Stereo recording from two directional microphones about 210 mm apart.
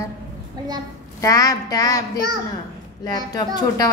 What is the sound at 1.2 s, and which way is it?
A woman's voice, 15° left (ahead or behind).